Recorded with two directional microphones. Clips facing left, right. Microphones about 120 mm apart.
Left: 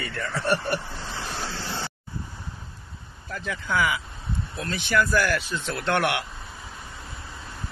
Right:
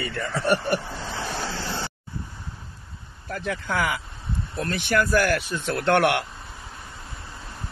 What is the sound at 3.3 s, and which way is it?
Speech, 55° right (ahead or behind).